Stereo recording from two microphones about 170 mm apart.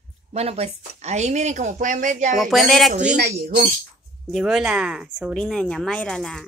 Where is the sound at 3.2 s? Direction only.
65° right (ahead or behind).